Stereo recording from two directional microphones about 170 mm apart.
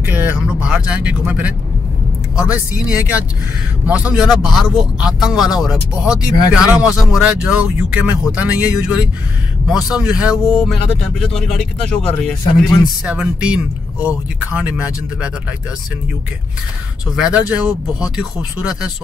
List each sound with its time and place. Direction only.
0.0 s speech: 10° right (ahead or behind); by 12.4 s 5° left (ahead or behind)
13.0 s speech: 5° right (ahead or behind)
17.1 s speech: 5° right (ahead or behind)